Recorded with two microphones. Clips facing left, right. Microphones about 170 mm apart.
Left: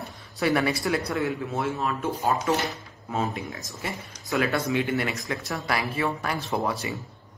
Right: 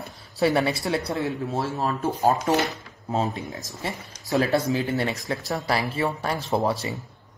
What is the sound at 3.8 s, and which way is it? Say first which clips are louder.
Speech: right 1 dB; 30° right (ahead or behind).